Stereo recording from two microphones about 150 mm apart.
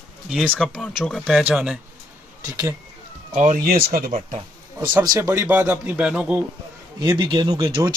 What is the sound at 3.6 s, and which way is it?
Speech, 85° right.